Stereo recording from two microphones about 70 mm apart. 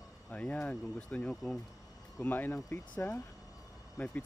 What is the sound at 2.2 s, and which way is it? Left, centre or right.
Speech, left.